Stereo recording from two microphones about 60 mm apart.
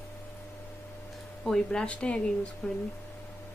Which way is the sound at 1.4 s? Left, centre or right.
Centre.